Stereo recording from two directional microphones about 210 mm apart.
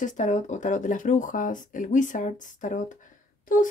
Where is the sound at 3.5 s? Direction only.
40° left (ahead or behind).